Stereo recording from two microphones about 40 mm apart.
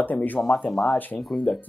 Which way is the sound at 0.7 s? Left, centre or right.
Centre.